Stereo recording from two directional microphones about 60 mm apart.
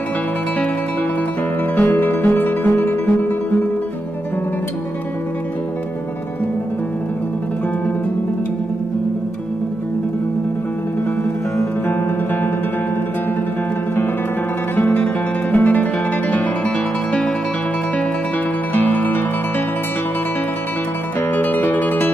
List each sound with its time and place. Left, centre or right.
1.8 s music: left
2.7 s guitar: left
14.8 s guitar: left
18.7 s music: left
21.4 s music: left